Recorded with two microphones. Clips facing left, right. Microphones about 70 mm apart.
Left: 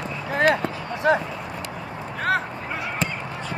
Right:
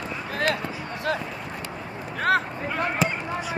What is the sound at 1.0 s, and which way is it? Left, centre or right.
Speech, left.